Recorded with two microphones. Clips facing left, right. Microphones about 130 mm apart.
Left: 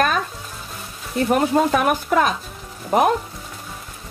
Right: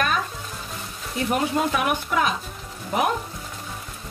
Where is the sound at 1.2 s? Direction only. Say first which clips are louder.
Left 5 dB; 45° left (ahead or behind).